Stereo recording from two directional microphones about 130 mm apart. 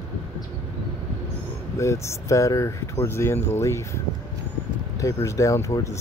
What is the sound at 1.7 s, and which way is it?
Speech, 20° left (ahead or behind).